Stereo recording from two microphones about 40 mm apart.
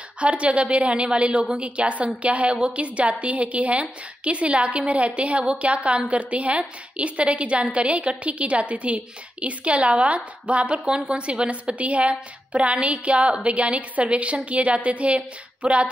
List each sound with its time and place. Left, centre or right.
0.2 s a woman's voice: right